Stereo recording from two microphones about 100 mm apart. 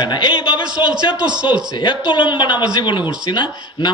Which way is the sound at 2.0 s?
50° left (ahead or behind).